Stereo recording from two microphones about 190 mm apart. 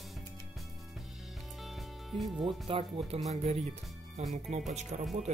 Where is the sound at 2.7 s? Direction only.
30° right (ahead or behind).